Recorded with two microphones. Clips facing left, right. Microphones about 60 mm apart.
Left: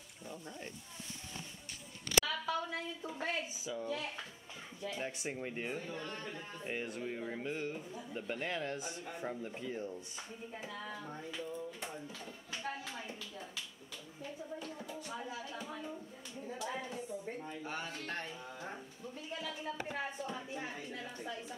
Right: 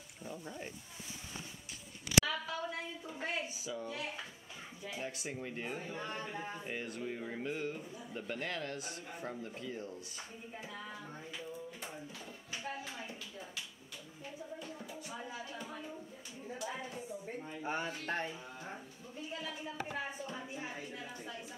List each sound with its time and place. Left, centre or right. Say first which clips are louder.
0.2 s speech: right 2 dB; centre
2.0 s a sound: right 1 dB; centre
3.5 s a man's voice: left 2 dB; centre
5.0 s speech: right 1 dB; centre
5.8 s speech: right 1 dB; centre
6.6 s a man's voice: left 1 dB; centre
9.4 s speech: left 2 dB; centre
10.7 s speech: left 2 dB; centre
11.3 s a sound: left 3 dB; centre
14.6 s music: left 1 dB; centre
16.5 s a man's voice: left 1 dB; centre
17.5 s speech: right 3 dB; centre
19.3 s a man's voice: left 1 dB; centre